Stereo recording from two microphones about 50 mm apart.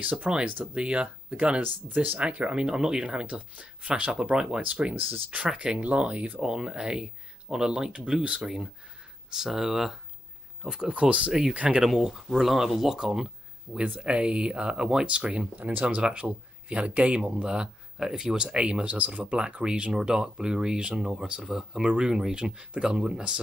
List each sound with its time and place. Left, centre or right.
0.0 s speech: right
1.6 s speech: right
2.1 s speech: right
3.3 s speech: right
4.6 s speech: right
5.5 s speech: centre
5.8 s speech: right
6.4 s speech: centre
8.4 s speech: centre
10.6 s speech: centre
11.8 s speech: centre
13.7 s speech: right